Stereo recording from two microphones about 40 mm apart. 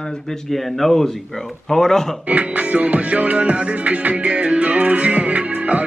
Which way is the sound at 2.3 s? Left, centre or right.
Right.